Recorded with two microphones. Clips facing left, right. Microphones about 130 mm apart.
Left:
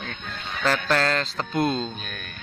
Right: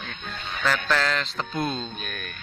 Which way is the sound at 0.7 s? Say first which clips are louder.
Left 2 dB; 35° left (ahead or behind).